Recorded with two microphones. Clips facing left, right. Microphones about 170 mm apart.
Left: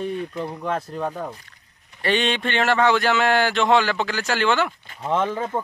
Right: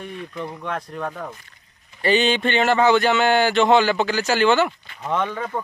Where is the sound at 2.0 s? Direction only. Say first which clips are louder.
Right 3 dB; centre (ahead or behind).